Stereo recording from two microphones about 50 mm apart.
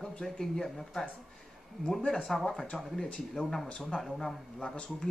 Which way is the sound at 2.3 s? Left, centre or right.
Centre.